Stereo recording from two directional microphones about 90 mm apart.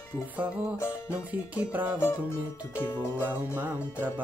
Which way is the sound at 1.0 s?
15° right (ahead or behind).